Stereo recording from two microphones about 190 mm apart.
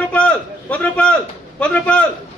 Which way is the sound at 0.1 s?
5° left (ahead or behind).